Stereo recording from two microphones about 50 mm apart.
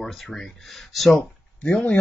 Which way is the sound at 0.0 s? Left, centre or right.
Centre.